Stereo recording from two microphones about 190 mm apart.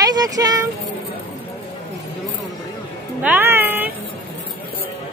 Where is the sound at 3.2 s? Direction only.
10° right (ahead or behind).